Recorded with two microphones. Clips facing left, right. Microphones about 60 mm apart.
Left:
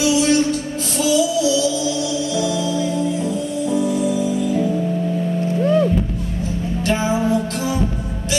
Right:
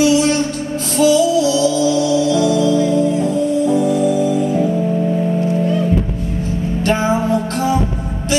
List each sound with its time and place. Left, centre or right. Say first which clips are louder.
0.9 s music: right 5 dB; right
6.8 s music: right 3 dB; right